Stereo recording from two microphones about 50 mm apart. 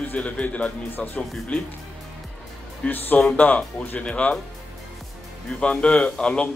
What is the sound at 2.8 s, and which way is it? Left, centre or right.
Speech, left.